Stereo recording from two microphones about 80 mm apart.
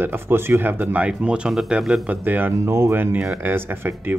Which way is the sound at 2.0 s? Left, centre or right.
Right.